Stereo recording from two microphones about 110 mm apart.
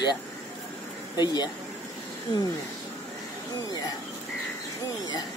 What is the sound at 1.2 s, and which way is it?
Speech, 40° left (ahead or behind).